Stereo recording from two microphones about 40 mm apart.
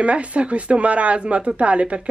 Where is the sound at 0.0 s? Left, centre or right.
Right.